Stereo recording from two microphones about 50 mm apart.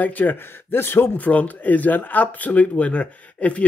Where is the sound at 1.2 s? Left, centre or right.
Left.